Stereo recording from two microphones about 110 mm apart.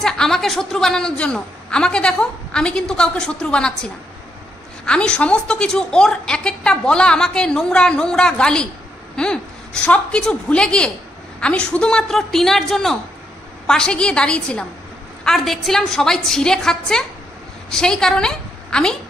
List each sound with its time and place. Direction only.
0.0 s a woman's voice: 5° left (ahead or behind)